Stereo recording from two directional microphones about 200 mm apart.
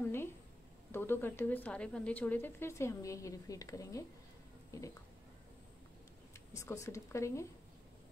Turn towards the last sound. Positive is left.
turn(degrees=15)  # may be behind; listen again after turning